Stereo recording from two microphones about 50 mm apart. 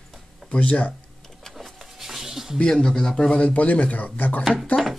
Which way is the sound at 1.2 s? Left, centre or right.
Centre.